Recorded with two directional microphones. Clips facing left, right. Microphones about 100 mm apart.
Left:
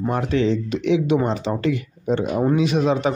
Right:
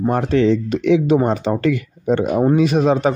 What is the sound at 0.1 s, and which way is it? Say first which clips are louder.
Speech: right 4 dB; 45° right (ahead or behind).